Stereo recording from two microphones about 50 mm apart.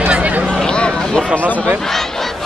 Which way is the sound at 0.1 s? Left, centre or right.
Right.